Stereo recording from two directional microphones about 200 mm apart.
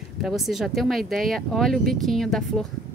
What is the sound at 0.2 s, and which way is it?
A woman's voice, centre (ahead or behind).